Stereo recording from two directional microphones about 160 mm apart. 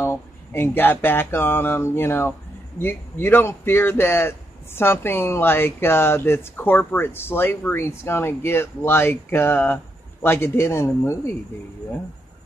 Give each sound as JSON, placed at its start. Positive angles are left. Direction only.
{"t": 0.0, "sound": "a man's voice", "side_deg": 15}